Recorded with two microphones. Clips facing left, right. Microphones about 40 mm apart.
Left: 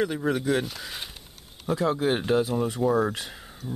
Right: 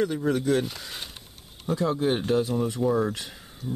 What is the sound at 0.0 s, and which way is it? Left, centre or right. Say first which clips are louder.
Speech: right 1 dB; centre.